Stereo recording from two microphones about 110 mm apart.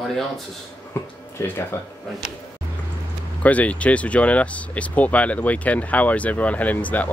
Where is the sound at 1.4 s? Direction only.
20° left (ahead or behind).